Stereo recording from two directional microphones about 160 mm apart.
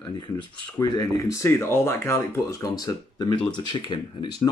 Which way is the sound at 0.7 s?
25° left (ahead or behind).